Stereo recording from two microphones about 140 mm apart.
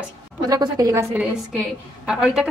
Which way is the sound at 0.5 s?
25° right (ahead or behind).